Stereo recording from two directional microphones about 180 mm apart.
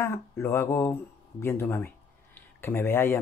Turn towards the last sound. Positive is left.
turn(degrees=15)  # may be behind; listen again after turning